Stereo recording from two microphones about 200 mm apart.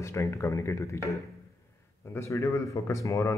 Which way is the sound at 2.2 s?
15° left (ahead or behind).